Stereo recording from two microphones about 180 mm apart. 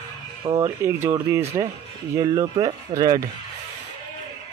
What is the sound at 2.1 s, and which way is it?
Speech, 25° right (ahead or behind).